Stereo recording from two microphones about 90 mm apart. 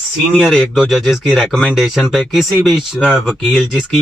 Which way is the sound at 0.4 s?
Centre (ahead or behind).